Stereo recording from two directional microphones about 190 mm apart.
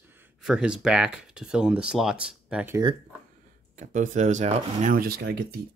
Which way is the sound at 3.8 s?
40° right (ahead or behind).